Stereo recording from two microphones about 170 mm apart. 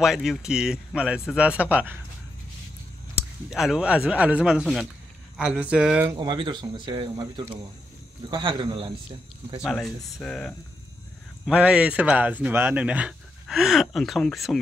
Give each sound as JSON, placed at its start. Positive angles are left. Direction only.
{"t": 0.0, "sound": "speech", "side_deg": 0}
{"t": 3.2, "sound": "speech", "side_deg": 0}
{"t": 6.1, "sound": "speech", "side_deg": -25}
{"t": 9.6, "sound": "speech", "side_deg": 0}
{"t": 11.4, "sound": "speech", "side_deg": -5}